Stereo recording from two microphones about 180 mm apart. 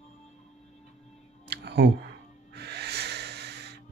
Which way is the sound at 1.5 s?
65° right (ahead or behind).